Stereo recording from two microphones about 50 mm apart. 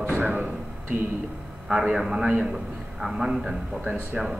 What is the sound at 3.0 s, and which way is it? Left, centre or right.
Speech, centre.